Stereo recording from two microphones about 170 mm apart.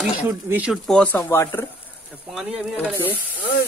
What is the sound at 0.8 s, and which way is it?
Speech, 5° left (ahead or behind).